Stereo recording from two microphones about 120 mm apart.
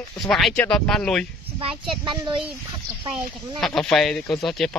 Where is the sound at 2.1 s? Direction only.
45° right (ahead or behind).